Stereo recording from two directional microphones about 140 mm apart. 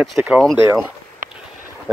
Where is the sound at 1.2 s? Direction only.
75° right (ahead or behind).